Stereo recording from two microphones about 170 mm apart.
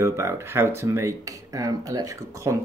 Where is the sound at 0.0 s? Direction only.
15° right (ahead or behind).